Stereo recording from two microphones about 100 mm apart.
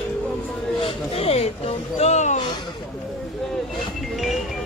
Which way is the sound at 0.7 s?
75° left (ahead or behind).